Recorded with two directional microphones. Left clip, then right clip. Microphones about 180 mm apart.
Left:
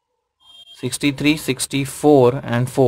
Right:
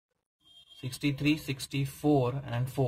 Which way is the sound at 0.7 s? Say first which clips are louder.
Left 13 dB; 40° left (ahead or behind).